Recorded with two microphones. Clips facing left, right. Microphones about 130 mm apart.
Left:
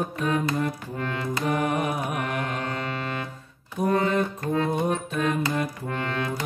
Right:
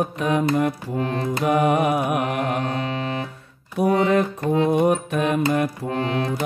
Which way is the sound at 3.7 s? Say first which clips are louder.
Right 5 dB; 75° right (ahead or behind).